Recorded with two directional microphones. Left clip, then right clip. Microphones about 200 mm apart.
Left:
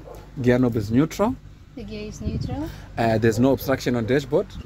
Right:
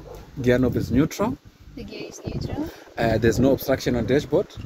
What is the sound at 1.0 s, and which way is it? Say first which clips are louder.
Speech: left 2 dB; 10° left (ahead or behind).